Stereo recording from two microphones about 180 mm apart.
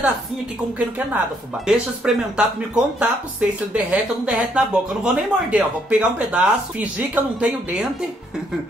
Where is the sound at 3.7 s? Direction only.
5° right (ahead or behind).